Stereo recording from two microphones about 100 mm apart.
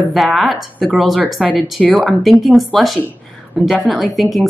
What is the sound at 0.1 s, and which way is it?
Speech, centre (ahead or behind).